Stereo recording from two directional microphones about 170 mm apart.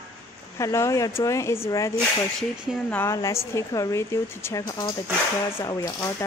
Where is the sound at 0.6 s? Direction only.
15° left (ahead or behind).